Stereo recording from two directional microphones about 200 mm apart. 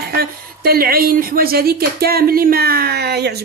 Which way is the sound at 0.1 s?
50° right (ahead or behind).